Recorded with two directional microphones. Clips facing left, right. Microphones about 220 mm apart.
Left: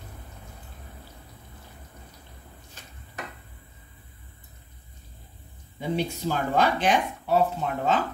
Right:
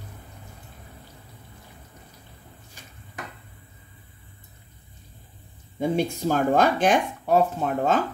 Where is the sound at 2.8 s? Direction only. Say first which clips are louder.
Right 1 dB; 10° right (ahead or behind).